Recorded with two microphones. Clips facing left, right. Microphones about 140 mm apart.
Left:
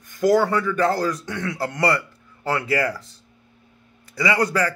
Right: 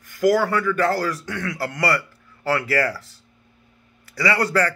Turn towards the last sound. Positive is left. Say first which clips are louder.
# even
turn(degrees=15)  # may be behind; listen again after turning